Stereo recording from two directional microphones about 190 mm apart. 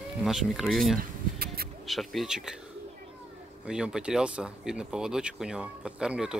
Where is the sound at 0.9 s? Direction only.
55° right (ahead or behind).